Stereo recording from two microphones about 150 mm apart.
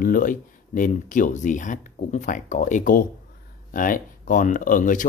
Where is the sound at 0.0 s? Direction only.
65° left (ahead or behind).